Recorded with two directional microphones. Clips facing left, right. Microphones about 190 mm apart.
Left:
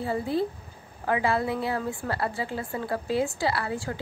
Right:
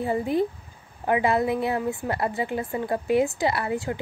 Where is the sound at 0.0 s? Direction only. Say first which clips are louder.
Right 3 dB; 20° right (ahead or behind).